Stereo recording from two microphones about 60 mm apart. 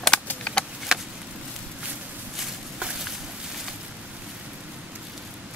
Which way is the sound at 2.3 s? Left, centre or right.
Centre.